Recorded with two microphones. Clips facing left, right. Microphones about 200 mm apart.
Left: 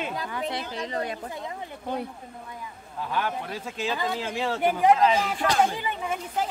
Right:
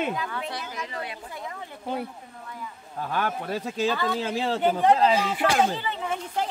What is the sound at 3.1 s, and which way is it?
Speech, 45° right (ahead or behind).